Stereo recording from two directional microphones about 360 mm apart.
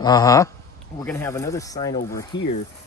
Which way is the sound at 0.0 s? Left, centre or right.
Centre.